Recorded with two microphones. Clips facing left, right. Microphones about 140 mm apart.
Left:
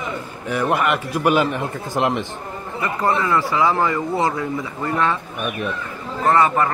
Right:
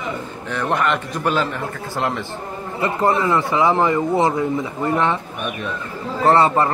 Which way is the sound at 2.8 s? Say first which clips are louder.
Right 2 dB; 25° right (ahead or behind).